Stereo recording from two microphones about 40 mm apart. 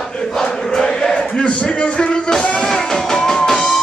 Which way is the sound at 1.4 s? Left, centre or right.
Left.